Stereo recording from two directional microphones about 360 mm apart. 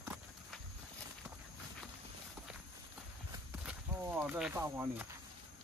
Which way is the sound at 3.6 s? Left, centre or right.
Centre.